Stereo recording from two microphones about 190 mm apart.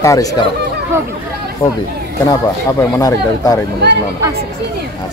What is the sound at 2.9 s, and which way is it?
Speech, 20° left (ahead or behind).